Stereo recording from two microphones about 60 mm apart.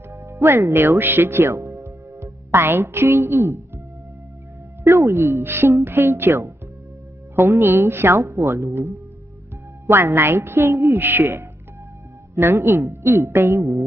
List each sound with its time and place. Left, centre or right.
0.1 s speech: right
4.8 s a woman's voice: right
10.9 s owl: right
12.4 s a woman's voice: right